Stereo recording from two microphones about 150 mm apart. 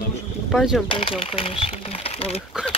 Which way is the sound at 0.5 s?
Centre (ahead or behind).